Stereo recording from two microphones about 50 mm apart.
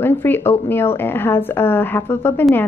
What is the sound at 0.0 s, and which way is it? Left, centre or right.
A woman's voice, left.